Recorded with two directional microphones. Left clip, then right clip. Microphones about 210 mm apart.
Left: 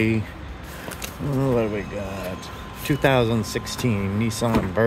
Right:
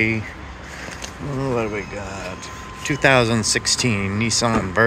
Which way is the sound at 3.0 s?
10° left (ahead or behind).